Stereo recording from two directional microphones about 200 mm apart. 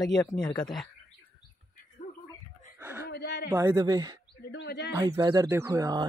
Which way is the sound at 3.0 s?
55° left (ahead or behind).